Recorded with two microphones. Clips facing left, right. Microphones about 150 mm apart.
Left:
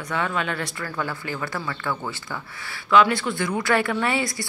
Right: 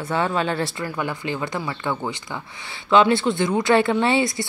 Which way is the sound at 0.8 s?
15° right (ahead or behind).